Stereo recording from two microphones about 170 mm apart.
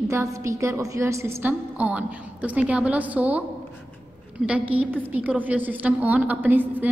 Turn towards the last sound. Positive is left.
turn(degrees=-10)  # may be behind; listen again after turning